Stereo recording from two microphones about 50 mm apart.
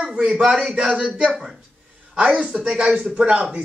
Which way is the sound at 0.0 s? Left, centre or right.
Centre.